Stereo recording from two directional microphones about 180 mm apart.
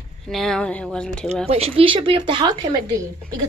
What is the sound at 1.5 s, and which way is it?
Speech, 35° right (ahead or behind).